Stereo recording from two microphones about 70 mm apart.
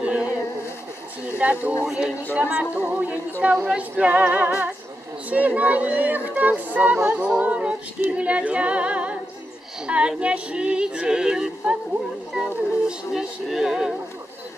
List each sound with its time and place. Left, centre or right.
0.0 s a sound: centre
1.4 s speech: centre
3.6 s yodeling: centre
5.3 s speech: right
7.4 s female singing: centre
8.1 s yodeling: centre
12.4 s music: centre